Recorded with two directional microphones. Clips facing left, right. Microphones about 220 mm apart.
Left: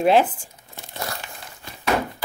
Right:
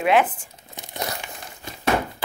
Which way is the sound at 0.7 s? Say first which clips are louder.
Right 2 dB; 20° right (ahead or behind).